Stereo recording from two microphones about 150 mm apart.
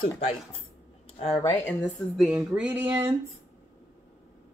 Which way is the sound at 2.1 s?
5° right (ahead or behind).